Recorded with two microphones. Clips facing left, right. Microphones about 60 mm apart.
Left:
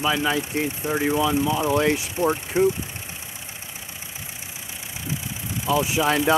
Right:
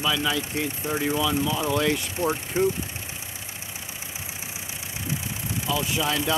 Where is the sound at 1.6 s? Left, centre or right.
Left.